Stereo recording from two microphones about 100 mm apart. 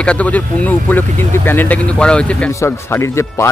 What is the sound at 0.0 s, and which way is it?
Speech, 15° left (ahead or behind).